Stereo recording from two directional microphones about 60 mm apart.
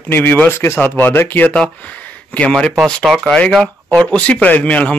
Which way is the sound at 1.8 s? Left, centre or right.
Left.